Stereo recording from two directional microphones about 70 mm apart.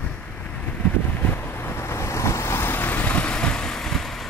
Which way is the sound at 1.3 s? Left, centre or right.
Left.